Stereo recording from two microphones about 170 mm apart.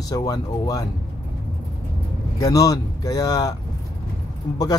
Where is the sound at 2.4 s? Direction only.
20° left (ahead or behind).